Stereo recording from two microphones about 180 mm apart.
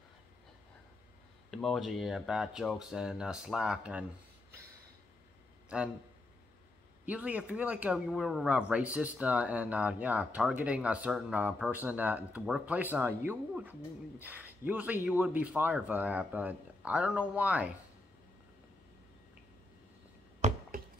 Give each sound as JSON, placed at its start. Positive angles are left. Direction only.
{"t": 1.5, "sound": "speech", "side_deg": 0}
{"t": 5.7, "sound": "speech", "side_deg": -5}
{"t": 7.1, "sound": "speech", "side_deg": -10}
{"t": 20.3, "sound": "a sound", "side_deg": -40}